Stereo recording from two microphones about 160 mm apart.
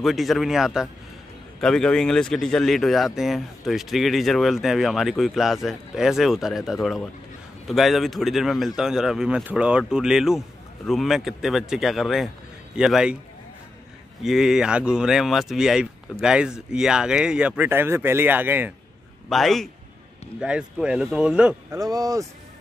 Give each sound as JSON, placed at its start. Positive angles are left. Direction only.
{"t": 0.0, "sound": "speech", "side_deg": 0}
{"t": 14.2, "sound": "speech", "side_deg": -5}
{"t": 19.2, "sound": "speech", "side_deg": 0}
{"t": 21.6, "sound": "speech", "side_deg": -20}